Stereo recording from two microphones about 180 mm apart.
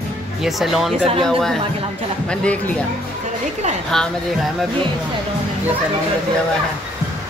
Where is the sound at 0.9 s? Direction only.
35° right (ahead or behind).